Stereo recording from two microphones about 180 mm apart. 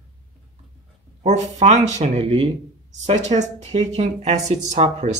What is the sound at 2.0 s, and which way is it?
Speech, 30° right (ahead or behind).